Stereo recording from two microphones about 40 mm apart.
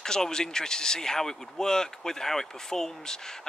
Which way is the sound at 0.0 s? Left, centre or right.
Centre.